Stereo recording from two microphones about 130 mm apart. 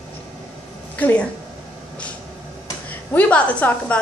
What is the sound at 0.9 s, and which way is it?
Speech, 10° left (ahead or behind).